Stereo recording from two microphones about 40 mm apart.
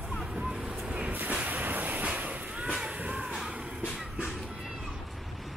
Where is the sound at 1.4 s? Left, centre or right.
Right.